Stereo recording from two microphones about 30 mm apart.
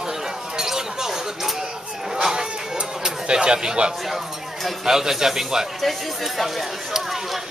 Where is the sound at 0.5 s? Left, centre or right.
Centre.